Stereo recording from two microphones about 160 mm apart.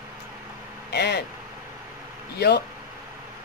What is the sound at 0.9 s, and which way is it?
Speech, 90° left.